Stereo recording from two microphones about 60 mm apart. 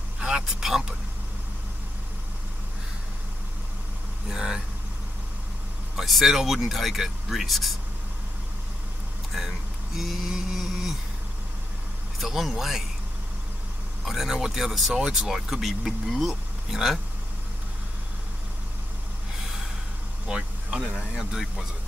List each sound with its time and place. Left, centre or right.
0.2 s vehicle: centre
4.3 s vehicle: centre
5.9 s speech: centre
9.9 s a sound: centre
12.2 s speech: centre
14.0 s speech: centre
20.2 s vehicle: centre
20.9 s a sound: centre